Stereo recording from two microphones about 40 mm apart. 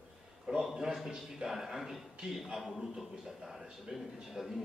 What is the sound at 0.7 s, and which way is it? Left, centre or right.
A man's voice, centre.